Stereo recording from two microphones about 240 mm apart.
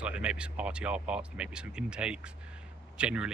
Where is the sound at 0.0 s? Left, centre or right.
Centre.